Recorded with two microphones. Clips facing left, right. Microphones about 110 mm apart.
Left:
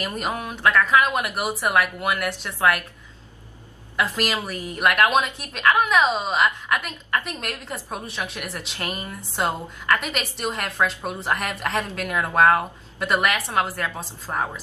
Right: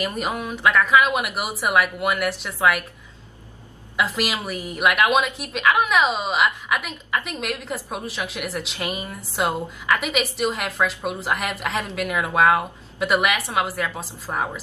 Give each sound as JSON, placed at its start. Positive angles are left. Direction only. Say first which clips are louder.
{"t": 0.3, "sound": "a woman's voice", "louder": "even", "side_deg": -10}
{"t": 3.9, "sound": "a woman's voice", "louder": "even", "side_deg": -5}